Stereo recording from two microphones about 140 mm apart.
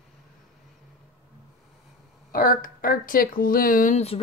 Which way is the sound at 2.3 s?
90° left.